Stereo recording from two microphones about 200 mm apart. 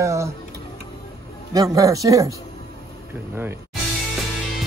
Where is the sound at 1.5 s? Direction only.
15° right (ahead or behind).